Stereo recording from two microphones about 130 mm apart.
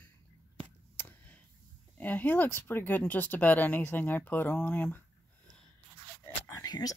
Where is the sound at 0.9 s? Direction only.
15° left (ahead or behind).